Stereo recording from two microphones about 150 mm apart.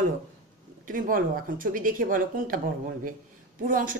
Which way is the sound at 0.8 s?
70° right (ahead or behind).